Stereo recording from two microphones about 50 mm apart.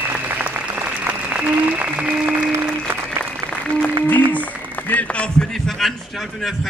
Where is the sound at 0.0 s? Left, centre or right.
Right.